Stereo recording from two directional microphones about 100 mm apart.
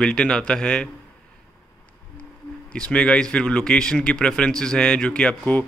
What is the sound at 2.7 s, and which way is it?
Speech, 10° left (ahead or behind).